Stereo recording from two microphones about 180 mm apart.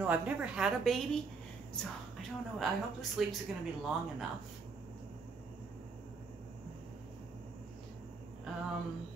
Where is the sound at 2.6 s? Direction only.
Centre (ahead or behind).